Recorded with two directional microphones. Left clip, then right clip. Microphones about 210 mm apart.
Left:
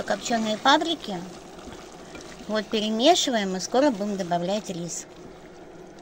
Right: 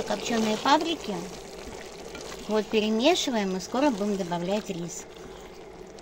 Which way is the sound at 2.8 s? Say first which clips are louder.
Left 4 dB; 20° left (ahead or behind).